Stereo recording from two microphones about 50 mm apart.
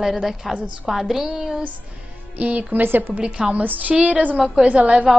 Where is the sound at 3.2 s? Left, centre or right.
Right.